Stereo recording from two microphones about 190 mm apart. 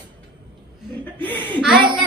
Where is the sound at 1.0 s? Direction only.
10° left (ahead or behind).